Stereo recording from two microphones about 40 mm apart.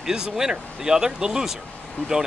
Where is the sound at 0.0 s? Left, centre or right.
Centre.